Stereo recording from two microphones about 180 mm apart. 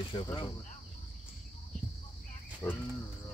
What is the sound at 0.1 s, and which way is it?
Speech, 25° left (ahead or behind).